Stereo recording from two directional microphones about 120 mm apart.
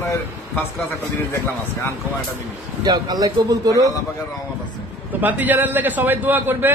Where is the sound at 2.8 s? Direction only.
35° right (ahead or behind).